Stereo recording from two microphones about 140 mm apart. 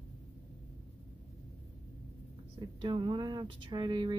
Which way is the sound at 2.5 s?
35° right (ahead or behind).